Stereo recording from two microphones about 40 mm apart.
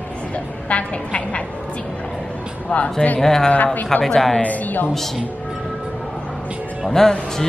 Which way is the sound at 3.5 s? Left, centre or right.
Left.